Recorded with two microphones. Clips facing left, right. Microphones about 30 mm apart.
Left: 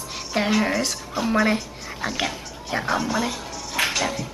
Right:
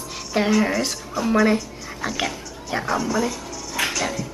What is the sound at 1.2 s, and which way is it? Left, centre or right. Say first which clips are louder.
Speech: right 1 dB; left.